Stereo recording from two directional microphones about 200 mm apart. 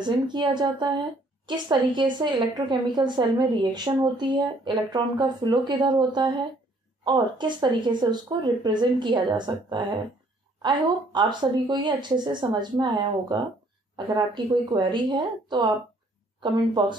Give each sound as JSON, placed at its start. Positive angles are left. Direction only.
{"t": 0.0, "sound": "a woman's voice", "side_deg": -20}
{"t": 13.9, "sound": "a woman's voice", "side_deg": -20}